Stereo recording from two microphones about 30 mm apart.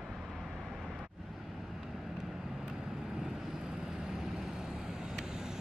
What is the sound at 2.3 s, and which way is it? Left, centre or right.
Vehicle, centre.